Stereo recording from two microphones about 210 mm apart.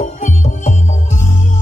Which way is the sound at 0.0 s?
35° left (ahead or behind).